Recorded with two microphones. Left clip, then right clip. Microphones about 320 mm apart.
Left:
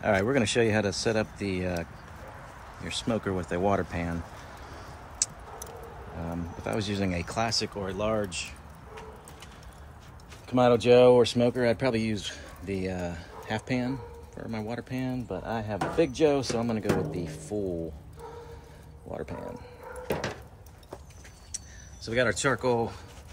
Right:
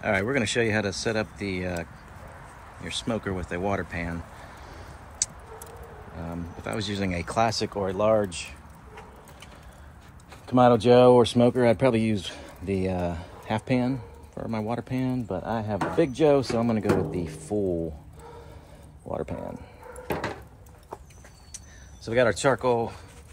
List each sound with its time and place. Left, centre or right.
0.0 s speech: centre
5.2 s a sound: centre
6.6 s speech: centre
10.4 s speech: right
19.0 s speech: centre
22.0 s speech: centre